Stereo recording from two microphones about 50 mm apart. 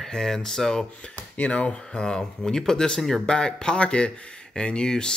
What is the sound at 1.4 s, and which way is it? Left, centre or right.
Speech, left.